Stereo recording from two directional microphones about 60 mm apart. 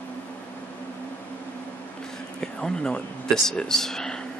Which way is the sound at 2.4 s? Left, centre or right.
Centre.